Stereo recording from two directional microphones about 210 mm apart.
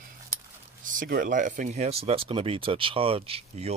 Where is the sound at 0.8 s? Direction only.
40° right (ahead or behind).